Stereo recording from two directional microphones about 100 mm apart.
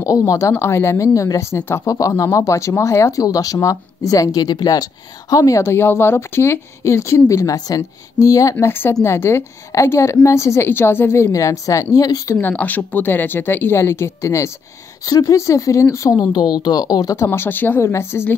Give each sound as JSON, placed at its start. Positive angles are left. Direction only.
{"t": 0.3, "sound": "speech", "side_deg": 30}
{"t": 12.4, "sound": "speech", "side_deg": 20}
{"t": 16.3, "sound": "speech", "side_deg": 45}